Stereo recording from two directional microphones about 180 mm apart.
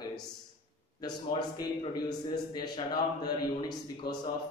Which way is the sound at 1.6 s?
20° left (ahead or behind).